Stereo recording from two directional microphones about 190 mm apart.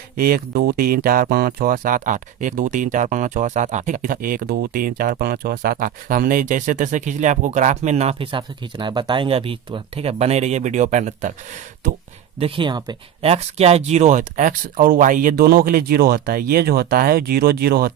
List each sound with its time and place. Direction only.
0.2 s speech: 50° right (ahead or behind)
12.4 s speech: 30° right (ahead or behind); by 17.9 s 55° right (ahead or behind)